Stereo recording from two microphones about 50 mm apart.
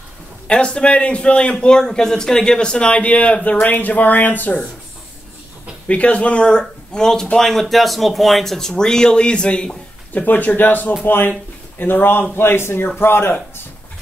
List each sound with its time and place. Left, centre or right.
0.5 s a man's voice: left
5.9 s a man's voice: left
10.1 s speech: left